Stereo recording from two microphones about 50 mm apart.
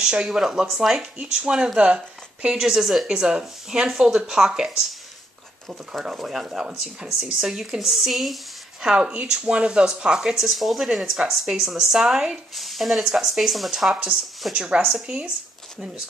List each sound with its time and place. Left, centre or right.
0.0 s speech: centre
8.8 s speech: centre
10.5 s speech: centre
12.5 s speech: centre
14.5 s speech: centre
14.9 s speech: centre